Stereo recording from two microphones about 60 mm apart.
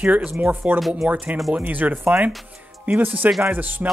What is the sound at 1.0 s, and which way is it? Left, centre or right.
Speech, right.